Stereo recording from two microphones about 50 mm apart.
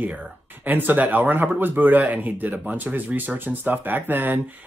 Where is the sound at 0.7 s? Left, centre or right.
Right.